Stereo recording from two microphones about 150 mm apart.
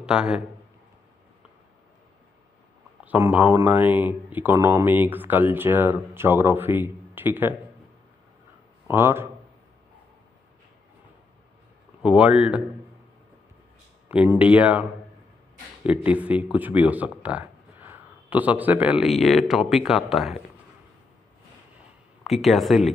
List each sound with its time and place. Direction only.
0.0 s a man's voice: 5° right (ahead or behind)
3.0 s speech: 10° right (ahead or behind)
8.8 s speech: 15° right (ahead or behind)
12.0 s speech: 5° right (ahead or behind)
14.0 s speech: 15° right (ahead or behind)
22.2 s speech: centre (ahead or behind)